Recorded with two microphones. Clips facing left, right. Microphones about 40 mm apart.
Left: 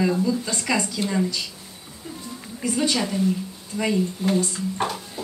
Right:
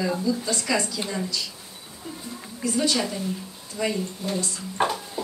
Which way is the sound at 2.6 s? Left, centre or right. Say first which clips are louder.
Left 1 dB; left.